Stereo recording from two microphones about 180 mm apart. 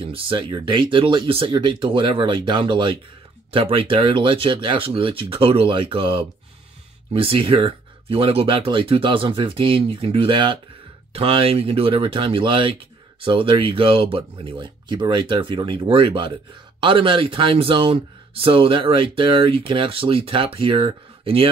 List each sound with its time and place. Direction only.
0.0 s speech: 30° right (ahead or behind)